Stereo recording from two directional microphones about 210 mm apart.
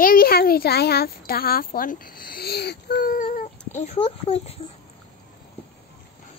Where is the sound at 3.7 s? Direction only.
30° left (ahead or behind).